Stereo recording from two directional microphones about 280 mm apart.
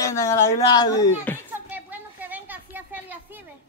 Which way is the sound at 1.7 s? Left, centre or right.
Centre.